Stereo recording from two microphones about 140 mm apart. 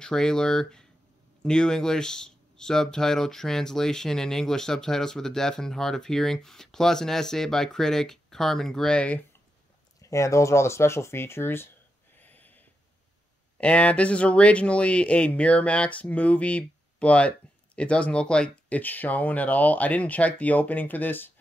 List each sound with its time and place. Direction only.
0.0 s speech: 5° left (ahead or behind)
10.0 s speech: 20° left (ahead or behind)
12.2 s a sound: 10° left (ahead or behind)
13.6 s speech: 10° left (ahead or behind)